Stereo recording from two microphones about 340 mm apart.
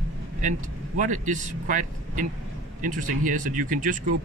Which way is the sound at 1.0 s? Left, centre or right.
Right.